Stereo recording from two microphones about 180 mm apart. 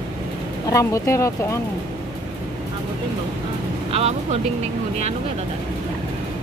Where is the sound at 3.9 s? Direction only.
35° right (ahead or behind).